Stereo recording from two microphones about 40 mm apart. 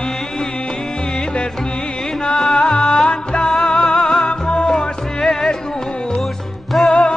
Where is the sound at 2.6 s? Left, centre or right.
Left.